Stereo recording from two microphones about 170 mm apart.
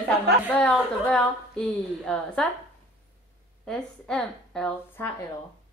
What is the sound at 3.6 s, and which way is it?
A woman's voice, 5° left (ahead or behind).